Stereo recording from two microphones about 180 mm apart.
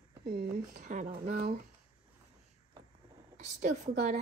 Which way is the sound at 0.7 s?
45° right (ahead or behind).